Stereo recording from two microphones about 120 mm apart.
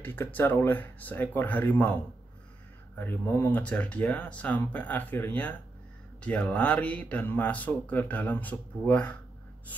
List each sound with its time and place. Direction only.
0.0 s speech: 15° left (ahead or behind)
3.0 s speech: 15° left (ahead or behind)